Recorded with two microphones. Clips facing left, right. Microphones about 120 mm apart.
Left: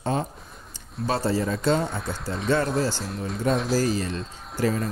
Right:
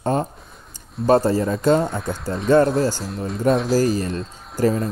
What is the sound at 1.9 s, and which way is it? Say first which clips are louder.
Speech: right 5 dB; centre (ahead or behind).